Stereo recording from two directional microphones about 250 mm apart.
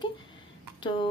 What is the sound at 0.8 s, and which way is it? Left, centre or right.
Speech, centre.